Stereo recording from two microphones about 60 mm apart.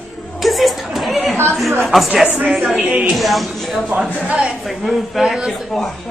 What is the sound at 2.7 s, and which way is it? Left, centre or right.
Speech, right.